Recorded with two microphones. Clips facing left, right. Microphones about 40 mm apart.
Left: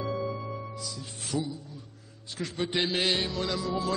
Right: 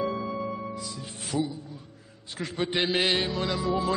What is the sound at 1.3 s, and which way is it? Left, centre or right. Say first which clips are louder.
Music: right 3 dB; centre.